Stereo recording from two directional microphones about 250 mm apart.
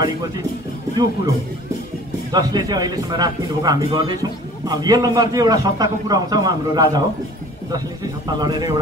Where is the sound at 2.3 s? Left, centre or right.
Centre.